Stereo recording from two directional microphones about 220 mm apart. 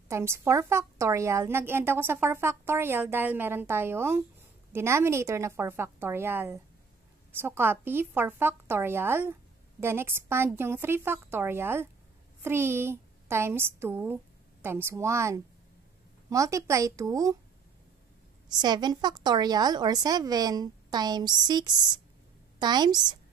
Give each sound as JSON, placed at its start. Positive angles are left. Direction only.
{"t": 0.1, "sound": "a woman's voice", "side_deg": -10}
{"t": 18.6, "sound": "a woman's voice", "side_deg": -20}